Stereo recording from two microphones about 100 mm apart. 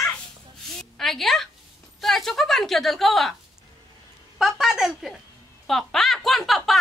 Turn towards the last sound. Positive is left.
turn(degrees=0)  # may be behind; listen again after turning